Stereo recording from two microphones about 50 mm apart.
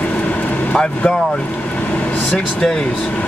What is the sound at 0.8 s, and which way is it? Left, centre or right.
Speech, centre.